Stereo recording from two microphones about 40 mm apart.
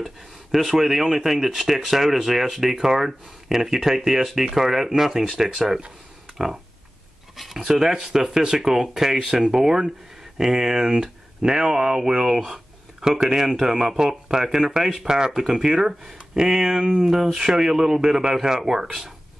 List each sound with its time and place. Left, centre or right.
0.0 s speech: centre
7.3 s a sound: centre
7.6 s speech: centre
15.3 s speech: centre